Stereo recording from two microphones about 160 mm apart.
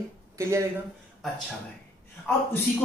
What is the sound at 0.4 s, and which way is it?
Speech, 15° right (ahead or behind).